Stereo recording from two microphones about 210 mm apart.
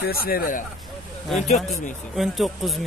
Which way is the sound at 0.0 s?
45° left (ahead or behind).